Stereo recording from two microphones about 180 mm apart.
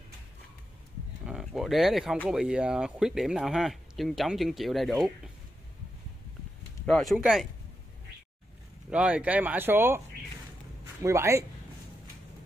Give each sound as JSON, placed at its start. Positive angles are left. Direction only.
{"t": 1.2, "sound": "speech", "side_deg": -5}
{"t": 6.9, "sound": "speech", "side_deg": 0}
{"t": 8.9, "sound": "speech", "side_deg": -5}